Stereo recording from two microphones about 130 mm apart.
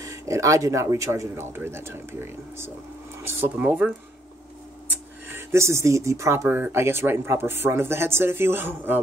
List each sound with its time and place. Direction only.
0.0 s speech: 25° right (ahead or behind)
5.3 s speech: 20° right (ahead or behind)